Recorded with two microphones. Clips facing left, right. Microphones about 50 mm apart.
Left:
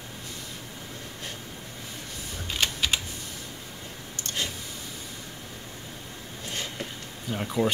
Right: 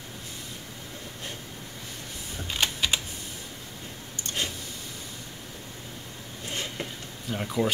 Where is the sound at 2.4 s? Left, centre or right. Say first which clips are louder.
Even; centre.